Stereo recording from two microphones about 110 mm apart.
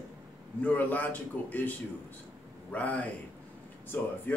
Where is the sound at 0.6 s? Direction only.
15° left (ahead or behind).